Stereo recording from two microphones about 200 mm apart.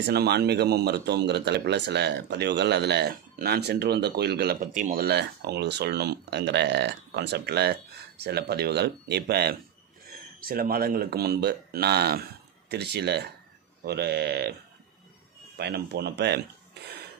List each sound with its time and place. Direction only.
0.0 s speech: 55° right (ahead or behind)
15.5 s speech: 55° right (ahead or behind)